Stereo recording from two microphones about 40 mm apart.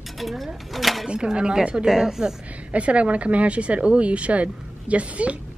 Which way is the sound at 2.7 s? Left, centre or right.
Right.